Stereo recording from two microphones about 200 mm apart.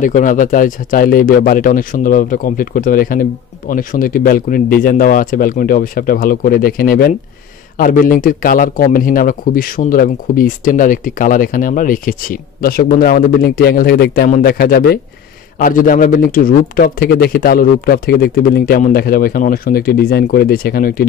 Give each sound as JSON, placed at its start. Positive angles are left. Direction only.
{"t": 0.0, "sound": "speech", "side_deg": 40}